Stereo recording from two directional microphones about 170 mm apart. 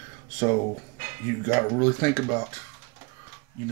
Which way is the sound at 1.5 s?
10° left (ahead or behind).